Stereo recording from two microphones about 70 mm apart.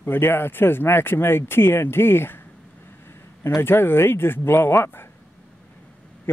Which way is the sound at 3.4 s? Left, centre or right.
Left.